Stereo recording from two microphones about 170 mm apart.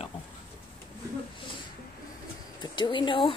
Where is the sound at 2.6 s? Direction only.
25° left (ahead or behind).